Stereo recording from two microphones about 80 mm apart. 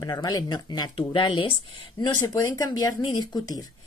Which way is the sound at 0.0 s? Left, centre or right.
Left.